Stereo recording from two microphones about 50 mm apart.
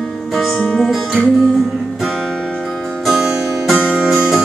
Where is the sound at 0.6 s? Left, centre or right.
Centre.